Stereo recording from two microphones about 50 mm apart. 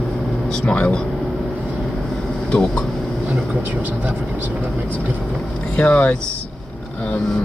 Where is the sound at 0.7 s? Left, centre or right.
Left.